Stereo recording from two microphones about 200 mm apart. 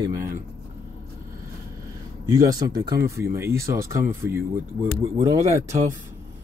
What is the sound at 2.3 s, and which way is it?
Speech, 20° right (ahead or behind).